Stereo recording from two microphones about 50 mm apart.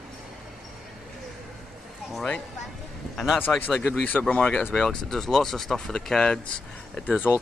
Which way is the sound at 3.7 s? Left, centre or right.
Centre.